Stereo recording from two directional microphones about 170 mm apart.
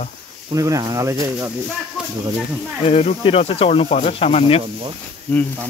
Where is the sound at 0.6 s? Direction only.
20° right (ahead or behind).